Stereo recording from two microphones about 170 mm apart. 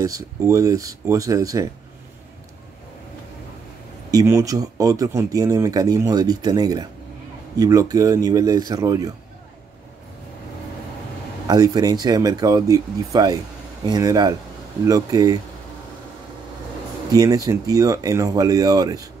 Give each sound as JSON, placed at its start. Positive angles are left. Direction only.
{"t": 0.0, "sound": "speech", "side_deg": -20}
{"t": 4.1, "sound": "speech", "side_deg": -20}
{"t": 11.4, "sound": "speech", "side_deg": -25}
{"t": 17.1, "sound": "speech", "side_deg": -20}